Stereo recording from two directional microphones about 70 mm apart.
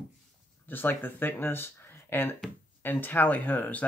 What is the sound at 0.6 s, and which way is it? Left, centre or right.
Speech, left.